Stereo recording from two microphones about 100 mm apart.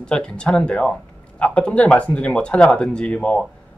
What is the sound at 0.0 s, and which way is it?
Speech, 10° left (ahead or behind).